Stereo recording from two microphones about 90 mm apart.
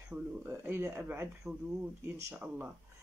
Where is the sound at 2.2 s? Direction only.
25° right (ahead or behind).